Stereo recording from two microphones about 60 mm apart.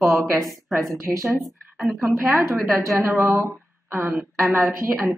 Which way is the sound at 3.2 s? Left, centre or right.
Right.